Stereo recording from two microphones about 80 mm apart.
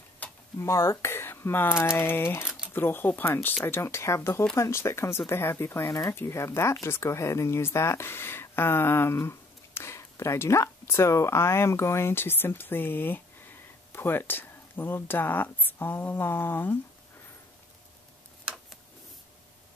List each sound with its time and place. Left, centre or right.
0.2 s a sound: centre
0.6 s speech: left
2.4 s typewriter: centre
2.7 s speech: left
5.9 s speech: left
6.1 s speech: left